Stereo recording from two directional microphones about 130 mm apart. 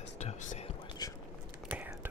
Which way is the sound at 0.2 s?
55° left (ahead or behind).